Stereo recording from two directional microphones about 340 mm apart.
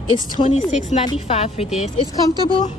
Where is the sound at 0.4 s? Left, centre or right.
Left.